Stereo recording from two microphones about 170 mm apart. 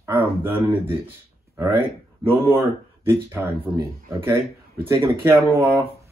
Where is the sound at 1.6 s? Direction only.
25° right (ahead or behind).